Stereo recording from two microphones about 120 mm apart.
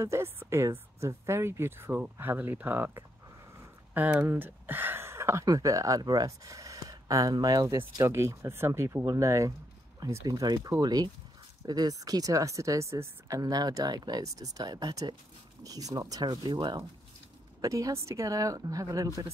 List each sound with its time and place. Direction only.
0.0 s speech: 25° right (ahead or behind)